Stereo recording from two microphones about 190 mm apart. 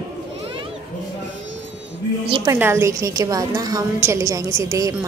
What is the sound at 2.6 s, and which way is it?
A woman's voice, 15° right (ahead or behind).